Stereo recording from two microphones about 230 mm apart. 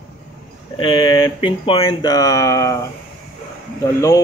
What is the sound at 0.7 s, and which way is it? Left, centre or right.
Speech, left.